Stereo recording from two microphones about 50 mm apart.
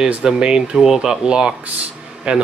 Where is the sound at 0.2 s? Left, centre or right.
Centre.